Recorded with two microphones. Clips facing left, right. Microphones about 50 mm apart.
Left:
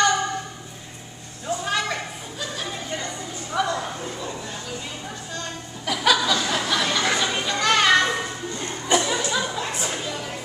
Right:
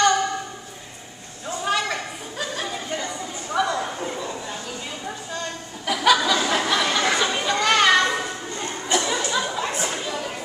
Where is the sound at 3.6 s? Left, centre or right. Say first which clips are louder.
Right 2 dB; centre.